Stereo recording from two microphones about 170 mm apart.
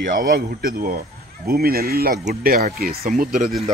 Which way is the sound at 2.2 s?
50° right (ahead or behind).